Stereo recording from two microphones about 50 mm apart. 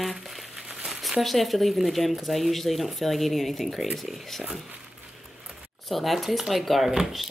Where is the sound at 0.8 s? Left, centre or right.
Centre.